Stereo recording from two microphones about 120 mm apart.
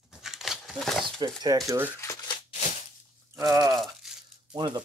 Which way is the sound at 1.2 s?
35° right (ahead or behind).